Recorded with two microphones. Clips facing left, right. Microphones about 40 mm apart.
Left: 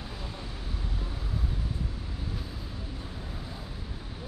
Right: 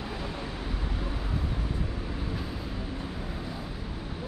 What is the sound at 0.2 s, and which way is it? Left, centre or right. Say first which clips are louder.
Vehicle: right 5 dB; right.